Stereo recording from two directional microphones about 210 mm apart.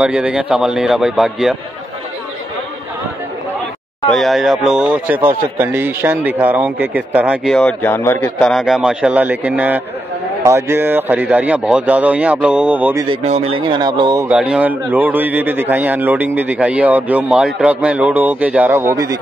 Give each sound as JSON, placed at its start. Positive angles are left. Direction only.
{"t": 0.0, "sound": "speech", "side_deg": -5}
{"t": 4.1, "sound": "a man's voice", "side_deg": 0}
{"t": 13.2, "sound": "speech", "side_deg": -30}
{"t": 14.3, "sound": "a man's voice", "side_deg": -5}